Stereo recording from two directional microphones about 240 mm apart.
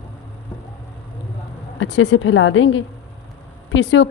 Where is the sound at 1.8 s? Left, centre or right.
Left.